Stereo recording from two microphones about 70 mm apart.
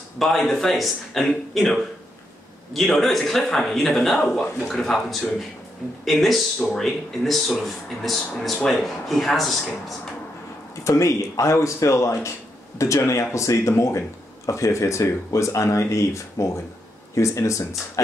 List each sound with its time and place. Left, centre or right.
0.5 s speech: centre
10.8 s speech: left